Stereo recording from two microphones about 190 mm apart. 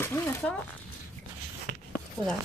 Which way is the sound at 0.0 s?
10° left (ahead or behind).